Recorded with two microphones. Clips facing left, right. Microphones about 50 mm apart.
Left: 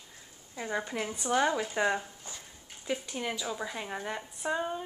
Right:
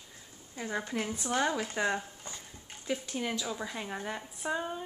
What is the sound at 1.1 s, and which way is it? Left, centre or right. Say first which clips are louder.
Speech: left 6 dB; left.